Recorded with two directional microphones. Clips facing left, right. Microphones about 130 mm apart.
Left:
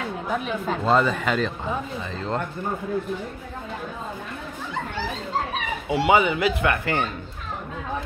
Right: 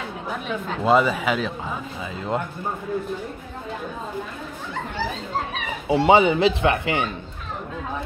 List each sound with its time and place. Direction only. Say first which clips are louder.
0.8 s speech: right 3 dB; 10° right (ahead or behind)
5.9 s speech: right 4 dB; 30° right (ahead or behind)